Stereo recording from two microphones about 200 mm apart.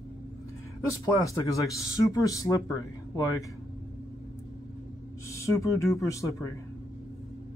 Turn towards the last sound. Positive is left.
turn(degrees=15)  # may be behind; listen again after turning